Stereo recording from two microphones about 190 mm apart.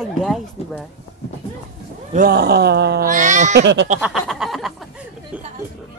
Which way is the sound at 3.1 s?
40° right (ahead or behind).